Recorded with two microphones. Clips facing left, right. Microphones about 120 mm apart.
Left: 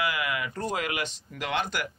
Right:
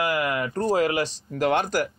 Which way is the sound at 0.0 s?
45° right (ahead or behind).